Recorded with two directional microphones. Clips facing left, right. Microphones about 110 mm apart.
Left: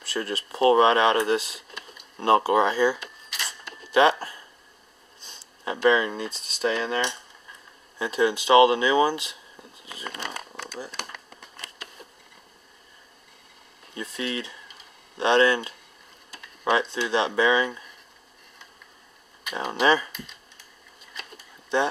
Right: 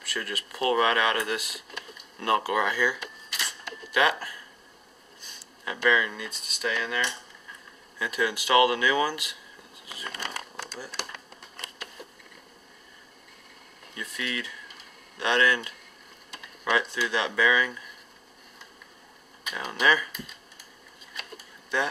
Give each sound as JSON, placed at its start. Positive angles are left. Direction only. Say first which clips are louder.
{"t": 0.0, "sound": "speech", "louder": "left 5 dB", "side_deg": 30}
{"t": 3.3, "sound": "a sound", "louder": "left 1 dB", "side_deg": 0}
{"t": 3.9, "sound": "speech", "louder": "left 6 dB", "side_deg": 30}
{"t": 10.2, "sound": "a sound", "louder": "left 1 dB", "side_deg": 0}
{"t": 13.9, "sound": "speech", "louder": "left 4 dB", "side_deg": 30}
{"t": 16.9, "sound": "speech", "louder": "left 4 dB", "side_deg": 30}
{"t": 19.5, "sound": "speech", "louder": "left 3 dB", "side_deg": 30}
{"t": 21.7, "sound": "speech", "louder": "left 5 dB", "side_deg": 25}